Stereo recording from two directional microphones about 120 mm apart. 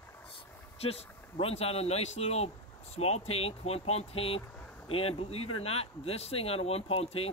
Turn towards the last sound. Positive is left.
turn(degrees=55)  # may be behind; listen again after turning